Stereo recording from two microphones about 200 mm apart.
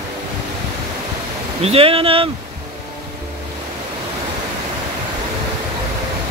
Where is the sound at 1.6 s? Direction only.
30° right (ahead or behind).